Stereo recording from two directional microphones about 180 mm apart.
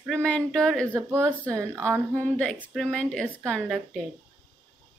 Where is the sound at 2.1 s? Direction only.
5° left (ahead or behind).